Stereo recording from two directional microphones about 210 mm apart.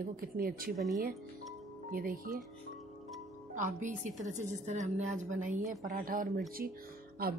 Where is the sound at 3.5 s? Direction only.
35° right (ahead or behind).